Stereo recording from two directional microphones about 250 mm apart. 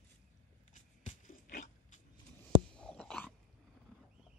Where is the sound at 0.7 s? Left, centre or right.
Left.